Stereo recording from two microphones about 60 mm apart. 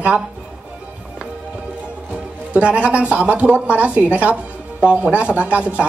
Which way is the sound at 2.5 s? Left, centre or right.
Right.